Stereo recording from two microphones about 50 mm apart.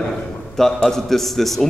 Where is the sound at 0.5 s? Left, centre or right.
Centre.